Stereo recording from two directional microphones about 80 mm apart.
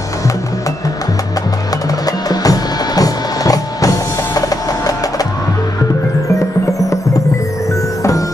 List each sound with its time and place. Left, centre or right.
2.0 s music: left